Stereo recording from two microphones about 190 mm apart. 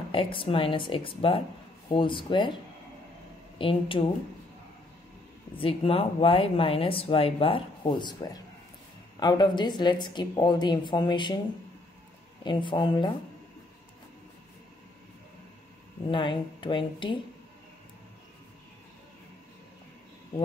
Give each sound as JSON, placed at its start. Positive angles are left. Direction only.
{"t": 0.1, "sound": "speech", "side_deg": 25}
{"t": 3.5, "sound": "speech", "side_deg": 30}
{"t": 5.6, "sound": "speech", "side_deg": 30}
{"t": 12.4, "sound": "speech", "side_deg": 25}
{"t": 16.1, "sound": "speech", "side_deg": 25}